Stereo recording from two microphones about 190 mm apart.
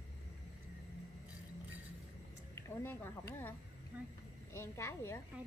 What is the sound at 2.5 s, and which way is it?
Speech, 10° left (ahead or behind).